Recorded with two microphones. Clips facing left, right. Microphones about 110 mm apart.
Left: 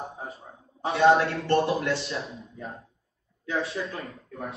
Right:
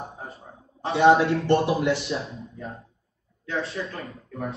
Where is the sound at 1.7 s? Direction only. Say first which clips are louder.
Right 3 dB; 30° right (ahead or behind).